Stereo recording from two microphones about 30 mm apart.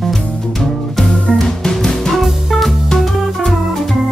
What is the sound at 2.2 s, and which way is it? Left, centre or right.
Music, centre.